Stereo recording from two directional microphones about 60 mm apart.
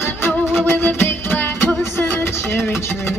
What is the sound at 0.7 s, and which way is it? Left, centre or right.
Music, left.